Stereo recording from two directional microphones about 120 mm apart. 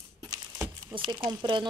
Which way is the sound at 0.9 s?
45° right (ahead or behind).